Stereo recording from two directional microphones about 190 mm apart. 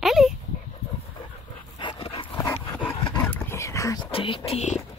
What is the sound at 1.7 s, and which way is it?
Dog, 25° left (ahead or behind).